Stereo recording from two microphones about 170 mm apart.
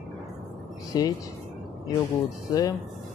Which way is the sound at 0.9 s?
25° left (ahead or behind).